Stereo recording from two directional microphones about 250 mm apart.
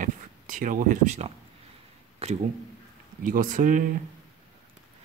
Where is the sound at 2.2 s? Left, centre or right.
Right.